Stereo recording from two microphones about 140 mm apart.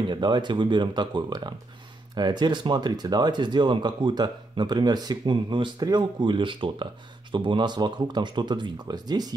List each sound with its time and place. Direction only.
0.1 s speech: 35° right (ahead or behind)